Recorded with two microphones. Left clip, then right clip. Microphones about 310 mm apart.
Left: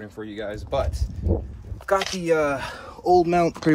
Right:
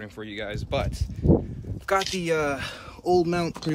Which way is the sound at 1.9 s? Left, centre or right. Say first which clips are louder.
Left 3 dB; centre.